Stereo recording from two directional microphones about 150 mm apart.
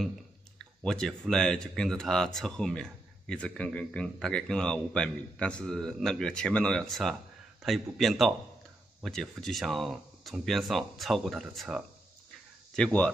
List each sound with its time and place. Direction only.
0.8 s speech: 5° left (ahead or behind)